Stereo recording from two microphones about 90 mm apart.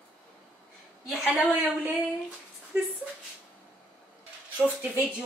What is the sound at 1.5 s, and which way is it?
Speech, 15° right (ahead or behind).